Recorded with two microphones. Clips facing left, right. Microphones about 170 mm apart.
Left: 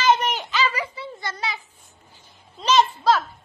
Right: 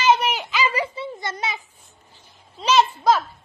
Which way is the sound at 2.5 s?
5° right (ahead or behind).